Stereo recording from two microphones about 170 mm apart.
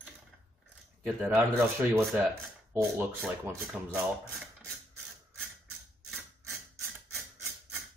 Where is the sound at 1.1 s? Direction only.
5° right (ahead or behind).